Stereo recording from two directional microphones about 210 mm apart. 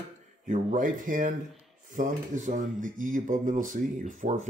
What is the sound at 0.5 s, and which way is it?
Speech, 40° right (ahead or behind).